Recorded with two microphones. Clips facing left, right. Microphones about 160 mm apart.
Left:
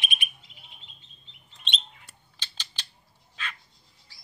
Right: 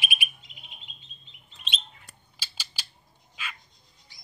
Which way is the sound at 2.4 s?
10° right (ahead or behind).